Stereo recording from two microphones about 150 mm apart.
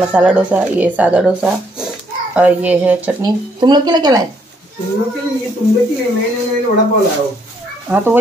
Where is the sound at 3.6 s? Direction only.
30° right (ahead or behind).